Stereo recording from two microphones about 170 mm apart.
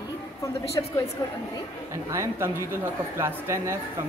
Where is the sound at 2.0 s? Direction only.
15° right (ahead or behind).